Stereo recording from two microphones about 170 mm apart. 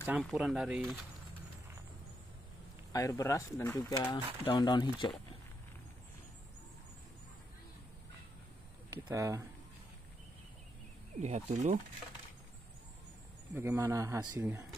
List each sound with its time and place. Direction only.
0.2 s speech: centre (ahead or behind)
2.9 s speech: 20° left (ahead or behind)
4.1 s speech: 25° left (ahead or behind)
8.9 s a man's voice: 20° right (ahead or behind)
11.1 s speech: 40° right (ahead or behind)
13.5 s a man's voice: 15° right (ahead or behind)